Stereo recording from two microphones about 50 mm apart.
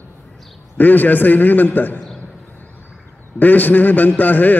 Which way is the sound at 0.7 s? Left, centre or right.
Left.